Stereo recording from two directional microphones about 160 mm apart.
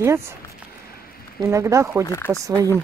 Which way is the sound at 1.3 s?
20° right (ahead or behind).